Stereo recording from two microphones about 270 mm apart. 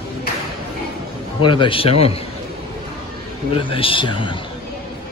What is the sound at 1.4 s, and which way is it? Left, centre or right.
Speech, centre.